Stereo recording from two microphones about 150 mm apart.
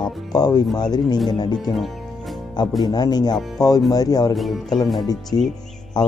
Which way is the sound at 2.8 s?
25° left (ahead or behind).